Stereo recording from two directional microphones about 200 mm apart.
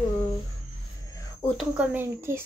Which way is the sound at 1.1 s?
15° left (ahead or behind).